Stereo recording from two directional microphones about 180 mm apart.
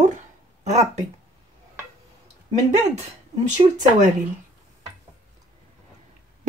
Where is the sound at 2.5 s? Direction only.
35° right (ahead or behind).